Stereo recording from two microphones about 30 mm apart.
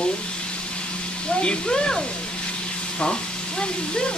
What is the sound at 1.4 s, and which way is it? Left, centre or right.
Speech, left.